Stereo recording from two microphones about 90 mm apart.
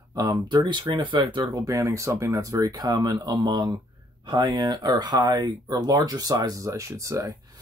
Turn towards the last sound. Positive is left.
turn(degrees=-35)  # may be behind; listen again after turning